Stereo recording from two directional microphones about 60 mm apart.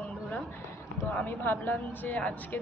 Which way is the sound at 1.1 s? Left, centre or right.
Left.